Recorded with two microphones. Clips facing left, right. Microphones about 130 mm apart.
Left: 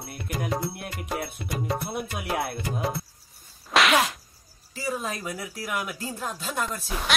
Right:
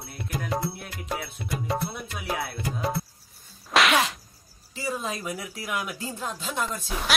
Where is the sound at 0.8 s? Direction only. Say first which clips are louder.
Left 2 dB; 55° left (ahead or behind).